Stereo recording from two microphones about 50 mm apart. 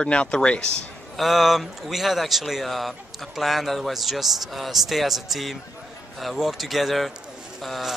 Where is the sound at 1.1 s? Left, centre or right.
Centre.